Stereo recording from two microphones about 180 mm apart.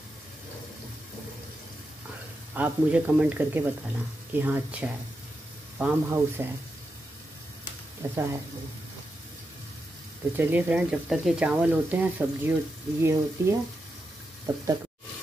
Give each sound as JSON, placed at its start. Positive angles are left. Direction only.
{"t": 2.5, "sound": "speech", "side_deg": -10}
{"t": 8.0, "sound": "speech", "side_deg": -10}
{"t": 10.3, "sound": "speech", "side_deg": -10}